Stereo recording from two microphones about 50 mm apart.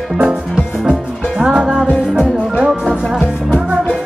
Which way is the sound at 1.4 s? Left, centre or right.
Centre.